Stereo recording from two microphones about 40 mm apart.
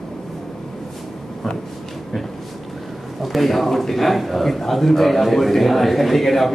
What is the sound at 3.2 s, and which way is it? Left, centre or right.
A man's voice, centre.